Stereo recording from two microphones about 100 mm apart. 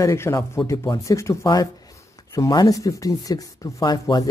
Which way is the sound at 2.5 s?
40° left (ahead or behind).